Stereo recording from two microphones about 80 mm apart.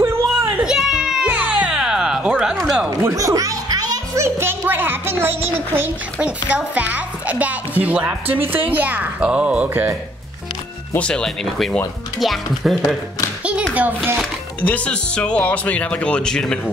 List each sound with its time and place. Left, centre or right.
0.0 s a sound: right
0.7 s children playing: centre
1.2 s music: right
3.0 s a child's voice: right; by 9.8 s centre
11.0 s speech: centre
12.2 s speech: centre
13.4 s a sound: centre
13.7 s speech: right
14.6 s speech: centre